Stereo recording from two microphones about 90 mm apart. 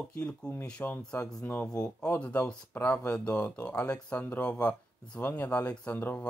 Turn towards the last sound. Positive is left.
turn(degrees=20)  # may be behind; listen again after turning